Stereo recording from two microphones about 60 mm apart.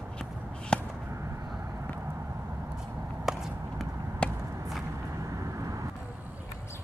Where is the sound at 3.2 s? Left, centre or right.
Centre.